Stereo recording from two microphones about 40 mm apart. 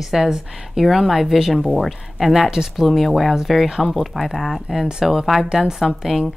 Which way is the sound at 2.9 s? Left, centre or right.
Centre.